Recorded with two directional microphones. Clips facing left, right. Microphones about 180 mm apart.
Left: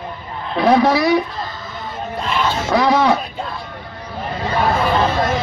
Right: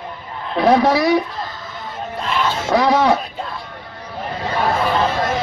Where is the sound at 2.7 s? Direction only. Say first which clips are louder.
Even; 40° right (ahead or behind).